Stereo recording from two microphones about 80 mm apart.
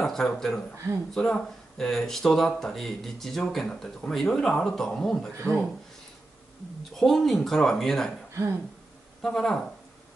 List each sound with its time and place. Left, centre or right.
0.0 s speech: centre
7.0 s speech: centre
8.3 s speech: right
9.2 s speech: centre